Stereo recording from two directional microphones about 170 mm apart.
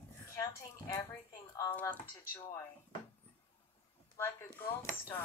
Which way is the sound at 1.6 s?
10° left (ahead or behind).